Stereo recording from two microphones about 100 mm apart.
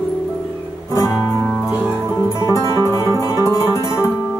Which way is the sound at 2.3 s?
30° left (ahead or behind).